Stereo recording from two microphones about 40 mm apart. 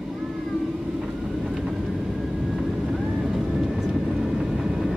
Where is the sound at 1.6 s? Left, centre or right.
Centre.